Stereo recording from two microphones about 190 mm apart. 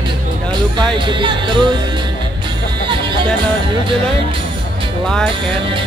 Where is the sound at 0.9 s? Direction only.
25° right (ahead or behind).